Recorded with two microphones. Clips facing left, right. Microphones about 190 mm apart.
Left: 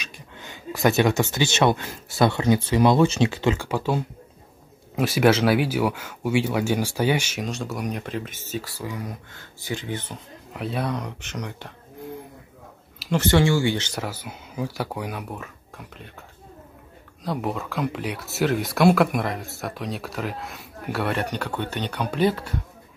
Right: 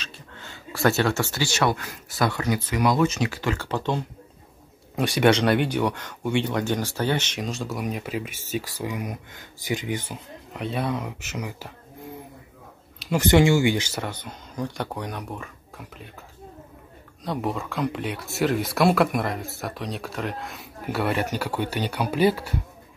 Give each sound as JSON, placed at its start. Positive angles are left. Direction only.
{"t": 0.0, "sound": "speech", "side_deg": 15}
{"t": 10.5, "sound": "speech", "side_deg": 0}
{"t": 13.1, "sound": "speech", "side_deg": -15}
{"t": 13.9, "sound": "speech", "side_deg": 5}
{"t": 17.2, "sound": "speech", "side_deg": 0}